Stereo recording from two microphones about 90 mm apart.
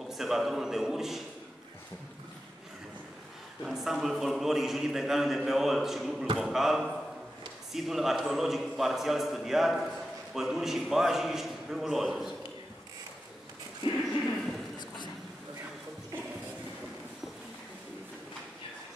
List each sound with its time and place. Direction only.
0.1 s a man's voice: 5° right (ahead or behind)
3.6 s a man's voice: 5° right (ahead or behind)
13.8 s a sound: 70° left (ahead or behind)